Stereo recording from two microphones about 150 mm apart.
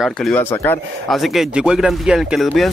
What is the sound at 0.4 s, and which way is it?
Speech, 15° left (ahead or behind).